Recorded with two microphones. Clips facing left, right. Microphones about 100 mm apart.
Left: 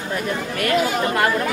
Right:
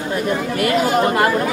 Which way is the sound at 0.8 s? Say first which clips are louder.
Right 5 dB; 45° right (ahead or behind).